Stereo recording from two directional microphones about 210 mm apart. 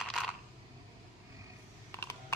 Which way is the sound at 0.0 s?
Centre (ahead or behind).